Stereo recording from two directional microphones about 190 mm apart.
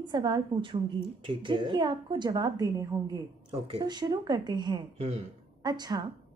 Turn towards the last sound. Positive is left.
turn(degrees=-20)  # may be behind; listen again after turning